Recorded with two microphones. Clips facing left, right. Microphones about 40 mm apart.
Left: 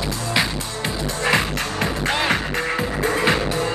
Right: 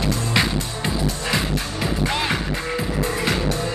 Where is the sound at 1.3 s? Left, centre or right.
Left.